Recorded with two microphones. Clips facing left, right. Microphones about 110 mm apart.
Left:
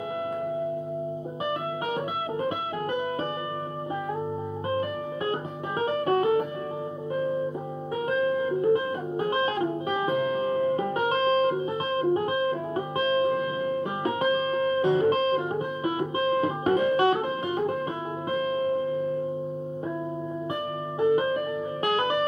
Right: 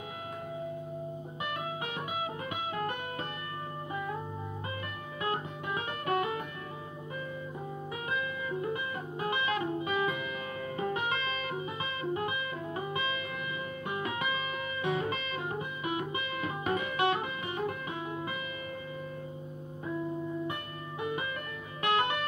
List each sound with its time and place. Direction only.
4.6 s music: 35° left (ahead or behind)
8.1 s music: 35° left (ahead or behind)
21.0 s music: 35° left (ahead or behind)